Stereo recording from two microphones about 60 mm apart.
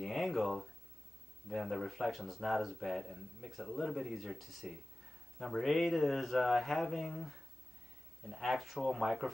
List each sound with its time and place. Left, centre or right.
0.0 s speech: centre